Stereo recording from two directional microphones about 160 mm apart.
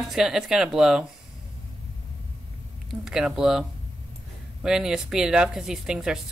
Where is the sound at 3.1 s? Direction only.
5° right (ahead or behind).